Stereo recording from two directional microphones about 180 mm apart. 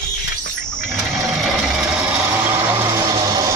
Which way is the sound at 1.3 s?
5° right (ahead or behind).